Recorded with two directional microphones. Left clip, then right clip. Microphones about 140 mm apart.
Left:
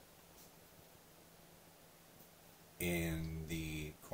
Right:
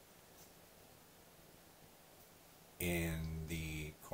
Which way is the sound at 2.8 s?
10° left (ahead or behind).